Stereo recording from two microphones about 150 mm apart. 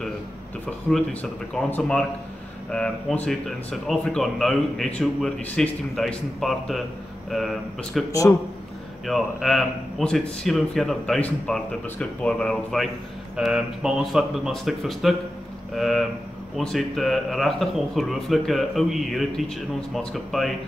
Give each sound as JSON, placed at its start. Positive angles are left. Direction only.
{"t": 1.5, "sound": "speech", "side_deg": 5}
{"t": 8.1, "sound": "a man's voice", "side_deg": 20}
{"t": 9.0, "sound": "speech", "side_deg": 0}